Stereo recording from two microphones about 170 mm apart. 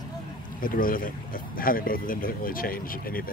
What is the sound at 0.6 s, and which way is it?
Speech, 55° left (ahead or behind).